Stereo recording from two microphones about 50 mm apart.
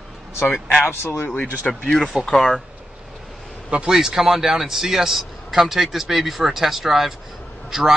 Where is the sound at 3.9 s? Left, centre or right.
Centre.